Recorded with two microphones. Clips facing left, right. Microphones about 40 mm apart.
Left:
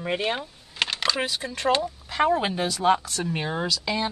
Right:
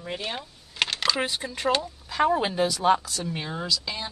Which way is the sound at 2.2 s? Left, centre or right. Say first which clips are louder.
Left 1 dB; centre.